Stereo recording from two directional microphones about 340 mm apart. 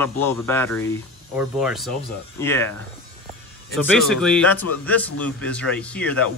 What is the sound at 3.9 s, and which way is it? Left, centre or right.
Speech, centre.